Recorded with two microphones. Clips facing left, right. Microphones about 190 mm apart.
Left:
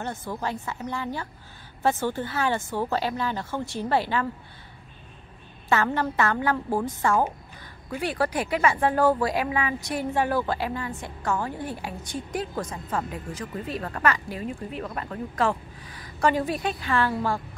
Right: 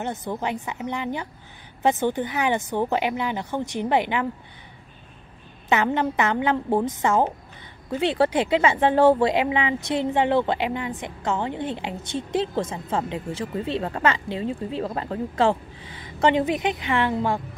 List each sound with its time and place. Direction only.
0.0 s speech: 20° right (ahead or behind)
5.7 s speech: 20° right (ahead or behind)